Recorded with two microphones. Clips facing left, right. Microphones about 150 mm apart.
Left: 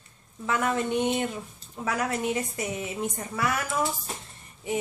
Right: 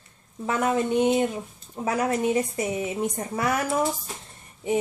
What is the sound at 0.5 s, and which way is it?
Speech, 25° right (ahead or behind).